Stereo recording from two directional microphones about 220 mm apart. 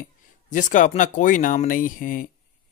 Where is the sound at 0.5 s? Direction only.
35° left (ahead or behind).